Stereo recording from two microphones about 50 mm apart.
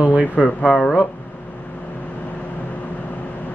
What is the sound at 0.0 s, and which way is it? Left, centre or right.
Speech, right.